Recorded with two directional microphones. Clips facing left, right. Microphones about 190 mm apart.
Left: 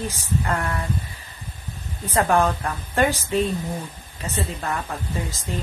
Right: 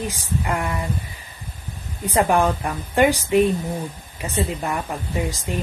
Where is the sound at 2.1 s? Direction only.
15° right (ahead or behind).